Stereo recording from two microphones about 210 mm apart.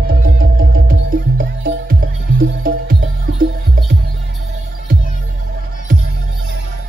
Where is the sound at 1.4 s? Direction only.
45° right (ahead or behind).